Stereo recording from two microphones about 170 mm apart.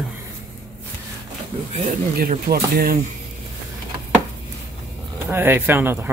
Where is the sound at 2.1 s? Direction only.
60° right (ahead or behind).